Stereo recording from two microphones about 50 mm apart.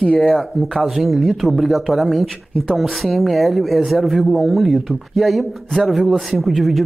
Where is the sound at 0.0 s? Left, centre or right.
Centre.